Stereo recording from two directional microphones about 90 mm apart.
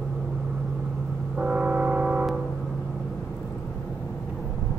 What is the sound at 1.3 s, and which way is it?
Brass instrument, 15° right (ahead or behind).